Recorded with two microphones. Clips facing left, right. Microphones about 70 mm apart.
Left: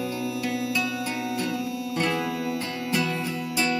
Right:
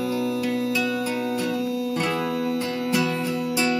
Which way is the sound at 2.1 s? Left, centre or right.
Centre.